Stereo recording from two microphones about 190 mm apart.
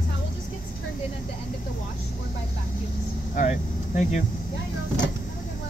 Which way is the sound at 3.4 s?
40° left (ahead or behind).